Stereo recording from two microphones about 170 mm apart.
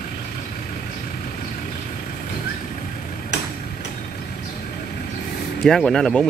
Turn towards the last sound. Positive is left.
turn(degrees=5)  # may be behind; listen again after turning